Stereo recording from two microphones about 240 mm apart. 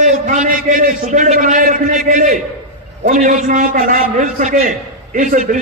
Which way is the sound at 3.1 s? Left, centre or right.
Right.